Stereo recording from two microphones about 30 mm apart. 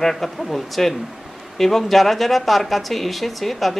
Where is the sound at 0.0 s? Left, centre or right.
Centre.